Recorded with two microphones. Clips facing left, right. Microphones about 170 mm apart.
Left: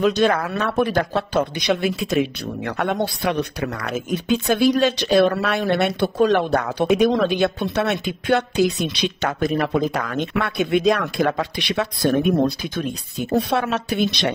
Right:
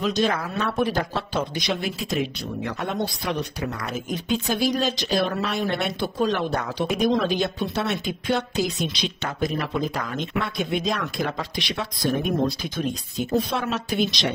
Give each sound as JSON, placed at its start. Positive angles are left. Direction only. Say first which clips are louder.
{"t": 0.0, "sound": "speech", "louder": "left 5 dB", "side_deg": 60}